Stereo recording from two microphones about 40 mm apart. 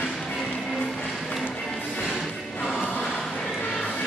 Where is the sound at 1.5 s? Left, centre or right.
Centre.